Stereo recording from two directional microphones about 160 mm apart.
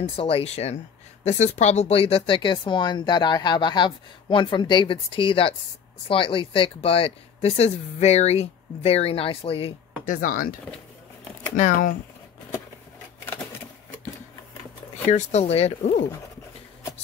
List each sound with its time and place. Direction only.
0.1 s speech: 35° left (ahead or behind)
10.0 s speech: 60° left (ahead or behind)
15.0 s speech: 45° left (ahead or behind)